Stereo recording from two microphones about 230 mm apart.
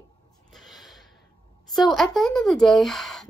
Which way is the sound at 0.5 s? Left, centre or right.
Centre.